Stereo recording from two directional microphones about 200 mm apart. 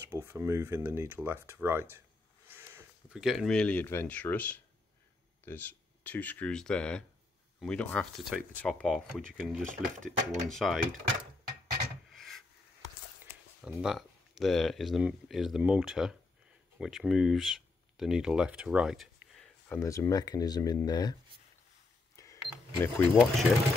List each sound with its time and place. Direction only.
0.0 s speech: 10° right (ahead or behind)
9.7 s speech: 40° right (ahead or behind)
10.5 s speech: centre (ahead or behind)
13.7 s speech: 5° right (ahead or behind)
19.8 s speech: 15° left (ahead or behind)
22.1 s cash register: 15° left (ahead or behind)
23.1 s speech: centre (ahead or behind)